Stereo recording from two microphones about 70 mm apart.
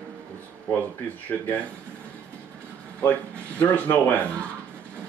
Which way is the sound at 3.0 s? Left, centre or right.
Left.